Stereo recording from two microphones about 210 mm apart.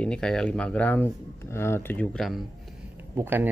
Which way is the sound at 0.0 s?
5° left (ahead or behind).